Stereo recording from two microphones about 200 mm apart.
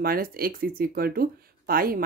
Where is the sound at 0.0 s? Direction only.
45° right (ahead or behind).